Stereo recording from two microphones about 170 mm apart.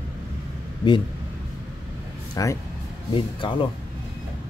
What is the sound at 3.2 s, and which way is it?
Speech, 30° left (ahead or behind).